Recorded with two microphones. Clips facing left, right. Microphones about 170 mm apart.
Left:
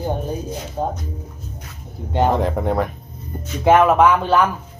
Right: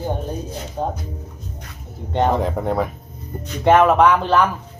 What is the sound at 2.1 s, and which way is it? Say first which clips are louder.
Speech: left 1 dB; centre (ahead or behind).